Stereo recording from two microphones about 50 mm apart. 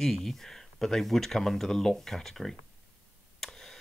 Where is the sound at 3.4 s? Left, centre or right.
Centre.